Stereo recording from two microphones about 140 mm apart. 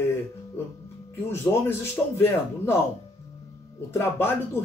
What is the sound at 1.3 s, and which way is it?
Speech, 15° left (ahead or behind).